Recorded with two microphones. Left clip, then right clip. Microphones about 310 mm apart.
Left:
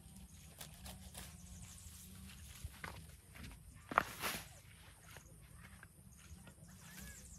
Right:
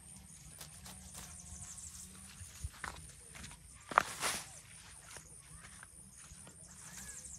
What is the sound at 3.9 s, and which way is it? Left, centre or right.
Walk, right.